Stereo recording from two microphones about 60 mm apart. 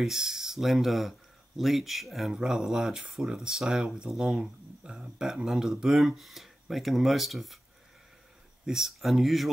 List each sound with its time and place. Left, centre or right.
0.0 s speech: centre
4.1 s speech: centre
4.4 s speech: centre
8.6 s speech: centre